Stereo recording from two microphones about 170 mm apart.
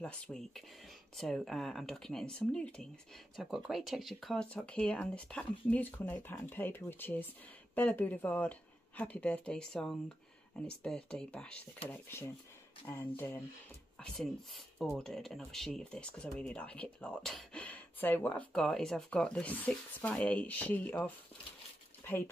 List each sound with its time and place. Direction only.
0.0 s speech: 5° left (ahead or behind)
13.9 s speech: centre (ahead or behind)